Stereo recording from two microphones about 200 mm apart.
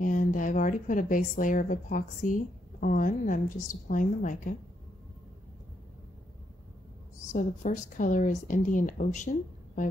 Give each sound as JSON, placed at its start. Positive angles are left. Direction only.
{"t": 0.0, "sound": "a woman's voice", "side_deg": 40}
{"t": 7.3, "sound": "a woman's voice", "side_deg": 40}